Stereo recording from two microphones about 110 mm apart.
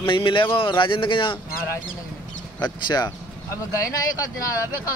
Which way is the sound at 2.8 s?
40° left (ahead or behind).